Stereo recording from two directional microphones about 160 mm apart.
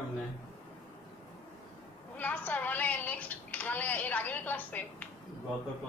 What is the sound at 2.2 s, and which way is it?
A woman's voice, 10° left (ahead or behind).